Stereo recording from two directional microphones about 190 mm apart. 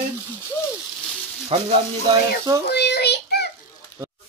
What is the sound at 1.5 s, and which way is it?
Speech, 30° right (ahead or behind).